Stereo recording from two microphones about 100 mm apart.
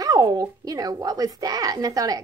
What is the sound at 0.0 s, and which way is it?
A woman's voice, 35° right (ahead or behind).